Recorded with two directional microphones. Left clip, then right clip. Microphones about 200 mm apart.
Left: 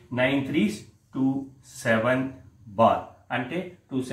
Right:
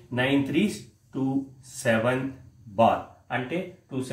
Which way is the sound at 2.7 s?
15° right (ahead or behind).